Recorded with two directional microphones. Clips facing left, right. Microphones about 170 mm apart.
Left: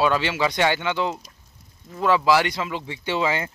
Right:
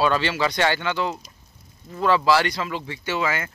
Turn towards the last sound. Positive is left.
turn(degrees=25)  # may be behind; listen again after turning